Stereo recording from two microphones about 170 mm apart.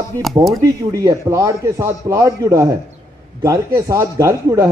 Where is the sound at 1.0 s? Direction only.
20° right (ahead or behind).